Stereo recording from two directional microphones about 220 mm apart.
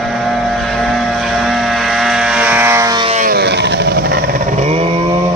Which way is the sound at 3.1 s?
35° right (ahead or behind).